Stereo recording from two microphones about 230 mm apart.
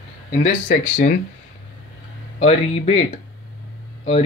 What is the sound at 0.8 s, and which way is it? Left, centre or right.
Speech, left.